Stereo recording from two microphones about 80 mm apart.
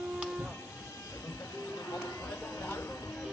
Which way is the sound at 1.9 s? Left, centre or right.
Left.